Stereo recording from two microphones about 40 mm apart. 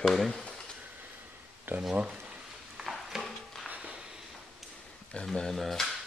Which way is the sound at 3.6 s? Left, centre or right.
Right.